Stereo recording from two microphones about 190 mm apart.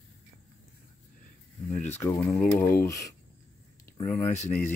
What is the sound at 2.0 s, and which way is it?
Speech, 15° left (ahead or behind).